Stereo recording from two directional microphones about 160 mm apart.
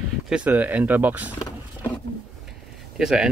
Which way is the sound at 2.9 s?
5° right (ahead or behind).